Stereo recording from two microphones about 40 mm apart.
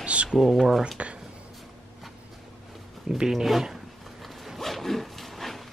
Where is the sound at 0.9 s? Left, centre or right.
Right.